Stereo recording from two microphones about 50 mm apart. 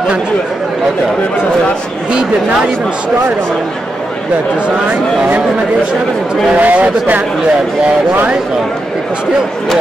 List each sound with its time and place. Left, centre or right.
6.5 s a man's voice: right